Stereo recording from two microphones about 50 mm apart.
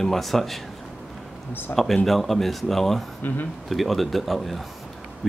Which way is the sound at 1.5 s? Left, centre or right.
Left.